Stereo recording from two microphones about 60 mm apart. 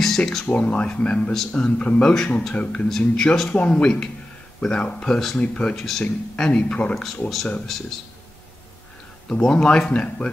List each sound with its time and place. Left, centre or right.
0.0 s speech: centre
0.5 s speech: centre
7.0 s speech: centre
9.3 s speech: centre